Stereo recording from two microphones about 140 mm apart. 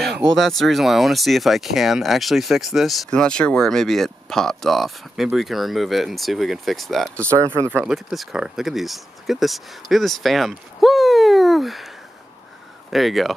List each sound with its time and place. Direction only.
0.4 s speech: centre (ahead or behind)
7.5 s speech: 15° right (ahead or behind)
7.9 s speech: centre (ahead or behind)
12.9 s speech: centre (ahead or behind)